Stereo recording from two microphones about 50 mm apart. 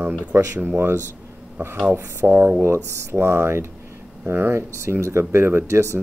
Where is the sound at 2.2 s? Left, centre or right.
Right.